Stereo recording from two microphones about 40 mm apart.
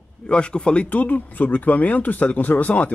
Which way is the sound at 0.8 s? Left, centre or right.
Left.